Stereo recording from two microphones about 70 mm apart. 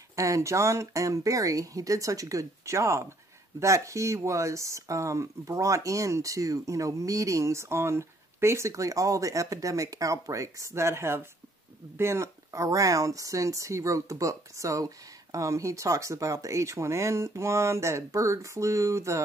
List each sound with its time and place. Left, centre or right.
0.1 s speech: right